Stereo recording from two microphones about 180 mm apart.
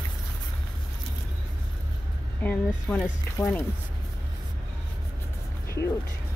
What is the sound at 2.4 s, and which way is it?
Speech, 10° left (ahead or behind).